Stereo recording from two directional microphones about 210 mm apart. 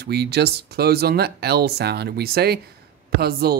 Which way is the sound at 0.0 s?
50° right (ahead or behind).